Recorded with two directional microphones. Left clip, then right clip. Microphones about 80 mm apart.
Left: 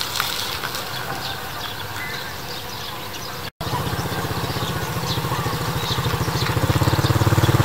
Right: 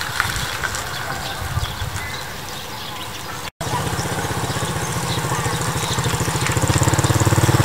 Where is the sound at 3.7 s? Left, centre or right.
Right.